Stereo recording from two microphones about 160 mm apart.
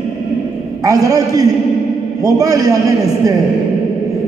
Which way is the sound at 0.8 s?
20° right (ahead or behind).